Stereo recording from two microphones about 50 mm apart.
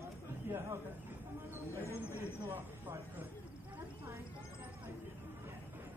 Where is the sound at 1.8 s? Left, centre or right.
Left.